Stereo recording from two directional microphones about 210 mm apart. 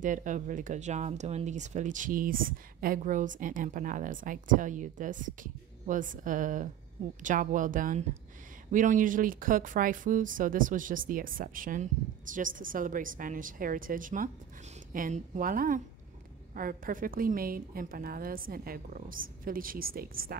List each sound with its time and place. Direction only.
0.0 s a woman's voice: 35° right (ahead or behind)